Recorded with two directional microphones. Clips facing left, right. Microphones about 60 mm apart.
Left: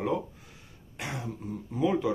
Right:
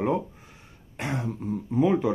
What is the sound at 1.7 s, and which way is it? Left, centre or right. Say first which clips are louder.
Speech: right 4 dB; right.